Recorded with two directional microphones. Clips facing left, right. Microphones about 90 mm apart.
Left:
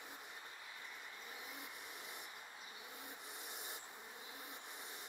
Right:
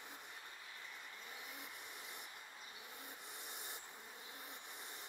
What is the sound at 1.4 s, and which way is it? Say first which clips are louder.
Rub: left 1 dB; centre (ahead or behind).